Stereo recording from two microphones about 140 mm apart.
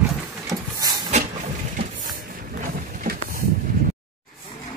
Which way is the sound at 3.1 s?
90° right.